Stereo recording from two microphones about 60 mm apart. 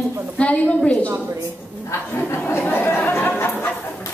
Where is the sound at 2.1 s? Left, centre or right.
Left.